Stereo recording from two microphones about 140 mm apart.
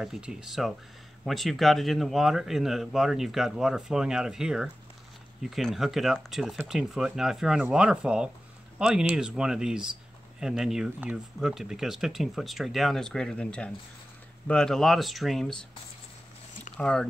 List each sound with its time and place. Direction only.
0.0 s speech: 5° right (ahead or behind)
16.7 s speech: 5° left (ahead or behind)